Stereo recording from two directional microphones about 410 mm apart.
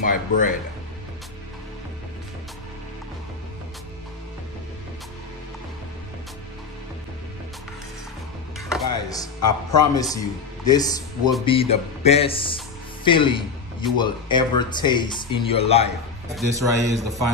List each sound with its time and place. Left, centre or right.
0.0 s speech: centre
8.5 s speech: centre
16.3 s a man's voice: centre